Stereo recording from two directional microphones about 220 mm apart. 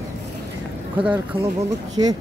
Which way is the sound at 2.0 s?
20° right (ahead or behind).